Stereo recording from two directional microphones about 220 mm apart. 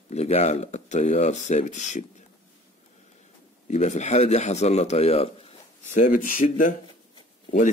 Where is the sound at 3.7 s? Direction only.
30° left (ahead or behind).